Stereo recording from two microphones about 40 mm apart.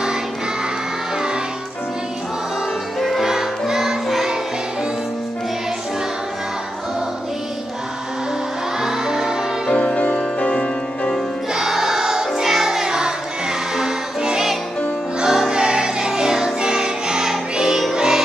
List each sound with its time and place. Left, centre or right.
1.1 s music: right
3.0 s music: centre
8.8 s music: centre
10.5 s music: left
11.5 s music: centre
15.5 s choir: right
17.9 s music: centre